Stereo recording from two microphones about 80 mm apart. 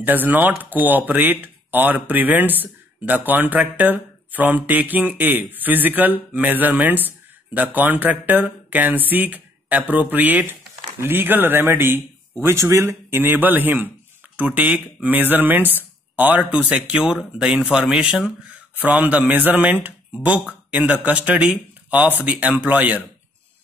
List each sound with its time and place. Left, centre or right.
0.0 s speech: right; by 18.3 s centre
18.9 s speech: centre